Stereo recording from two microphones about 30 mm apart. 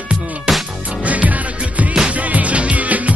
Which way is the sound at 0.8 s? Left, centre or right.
Right.